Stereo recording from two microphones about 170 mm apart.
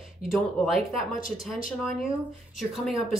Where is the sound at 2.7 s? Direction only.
Centre (ahead or behind).